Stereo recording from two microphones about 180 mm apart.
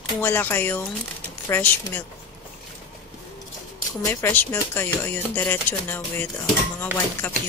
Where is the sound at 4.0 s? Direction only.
15° left (ahead or behind).